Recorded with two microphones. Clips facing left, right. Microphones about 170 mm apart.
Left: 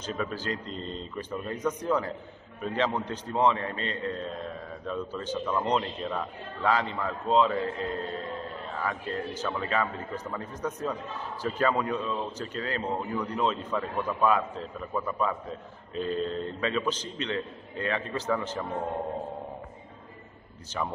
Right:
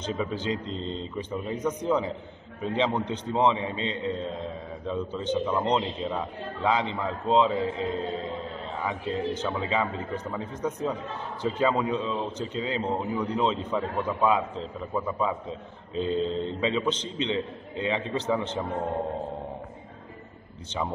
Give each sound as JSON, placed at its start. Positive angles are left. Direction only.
{"t": 0.0, "sound": "a man's voice", "side_deg": -20}